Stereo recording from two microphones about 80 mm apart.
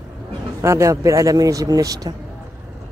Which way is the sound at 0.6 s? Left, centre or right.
Right.